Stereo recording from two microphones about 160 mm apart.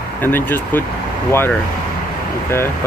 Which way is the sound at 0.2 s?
10° left (ahead or behind).